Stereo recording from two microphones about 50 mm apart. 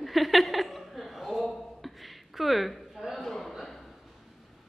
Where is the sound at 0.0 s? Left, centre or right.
Centre.